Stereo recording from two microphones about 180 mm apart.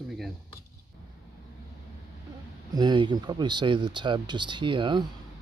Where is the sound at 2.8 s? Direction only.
25° right (ahead or behind).